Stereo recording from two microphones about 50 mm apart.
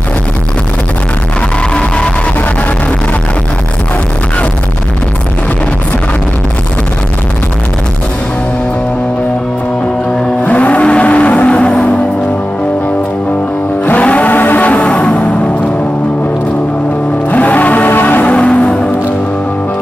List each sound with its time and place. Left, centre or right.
10.4 s vehicle: left
13.9 s music: left
17.3 s music: left
18.2 s vehicle: left
18.5 s music: centre